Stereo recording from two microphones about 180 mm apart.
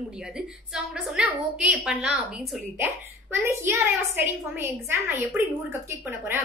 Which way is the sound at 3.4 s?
15° right (ahead or behind).